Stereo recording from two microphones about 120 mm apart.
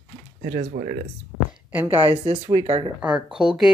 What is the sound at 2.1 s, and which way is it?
Speech, 55° right (ahead or behind).